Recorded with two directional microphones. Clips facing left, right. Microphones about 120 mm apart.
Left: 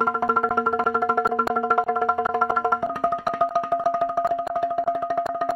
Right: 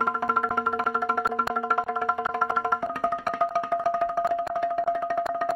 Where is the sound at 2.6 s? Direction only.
15° left (ahead or behind).